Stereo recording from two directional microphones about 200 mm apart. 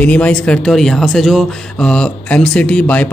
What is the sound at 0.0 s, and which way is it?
A man's voice, 5° left (ahead or behind).